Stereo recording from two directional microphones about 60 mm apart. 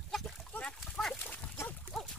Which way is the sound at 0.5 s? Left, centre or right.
Left.